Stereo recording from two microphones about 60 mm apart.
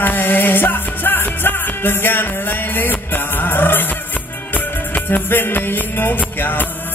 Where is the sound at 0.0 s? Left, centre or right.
Left.